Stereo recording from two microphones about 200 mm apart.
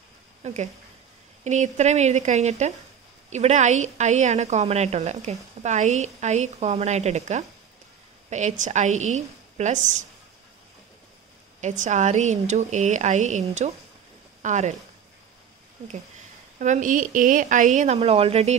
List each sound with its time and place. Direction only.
0.4 s a woman's voice: 35° right (ahead or behind)
11.6 s a woman's voice: 40° right (ahead or behind)
16.5 s a woman's voice: 40° right (ahead or behind)